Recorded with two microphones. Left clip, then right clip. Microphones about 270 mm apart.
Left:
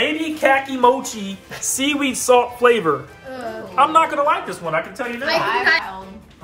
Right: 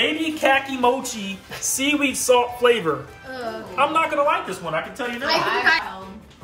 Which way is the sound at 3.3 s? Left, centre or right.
Centre.